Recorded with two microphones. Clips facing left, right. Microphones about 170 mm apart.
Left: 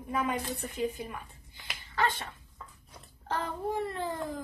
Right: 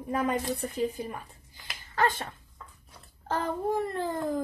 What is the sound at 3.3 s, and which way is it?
A child's voice, 45° right (ahead or behind).